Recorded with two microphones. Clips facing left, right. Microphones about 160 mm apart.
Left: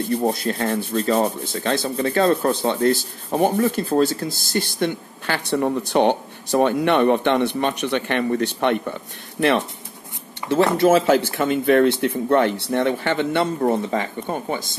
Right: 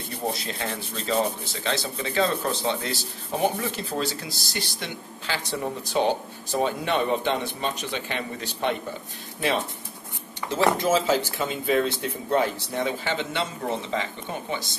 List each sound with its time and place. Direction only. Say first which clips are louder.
0.3 s rub: left 8 dB; 50° left (ahead or behind)
10.5 s speech: left 6 dB; 60° left (ahead or behind)